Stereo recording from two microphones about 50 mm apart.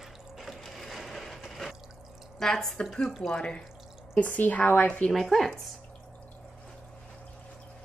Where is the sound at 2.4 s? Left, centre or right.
Centre.